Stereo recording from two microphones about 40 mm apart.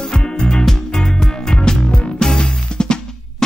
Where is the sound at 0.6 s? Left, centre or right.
Centre.